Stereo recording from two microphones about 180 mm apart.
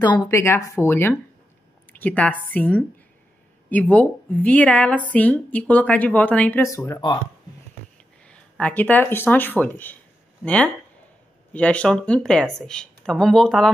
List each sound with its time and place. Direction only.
0.0 s a woman's voice: 25° left (ahead or behind)
6.9 s speech: 25° left (ahead or behind)
8.3 s a woman's voice: 10° left (ahead or behind)